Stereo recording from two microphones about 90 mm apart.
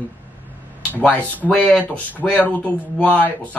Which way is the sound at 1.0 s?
15° left (ahead or behind).